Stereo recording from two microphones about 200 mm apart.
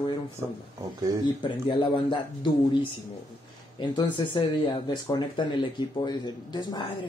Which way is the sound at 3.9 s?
25° left (ahead or behind).